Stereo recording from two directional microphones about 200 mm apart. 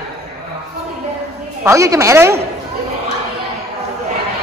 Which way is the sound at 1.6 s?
15° right (ahead or behind).